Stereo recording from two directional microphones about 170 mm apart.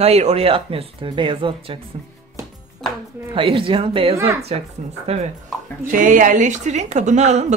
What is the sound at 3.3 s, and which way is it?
A woman's voice, 30° right (ahead or behind).